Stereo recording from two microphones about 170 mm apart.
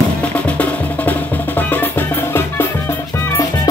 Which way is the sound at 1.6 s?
10° left (ahead or behind).